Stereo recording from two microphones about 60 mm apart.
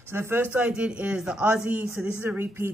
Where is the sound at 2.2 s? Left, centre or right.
Right.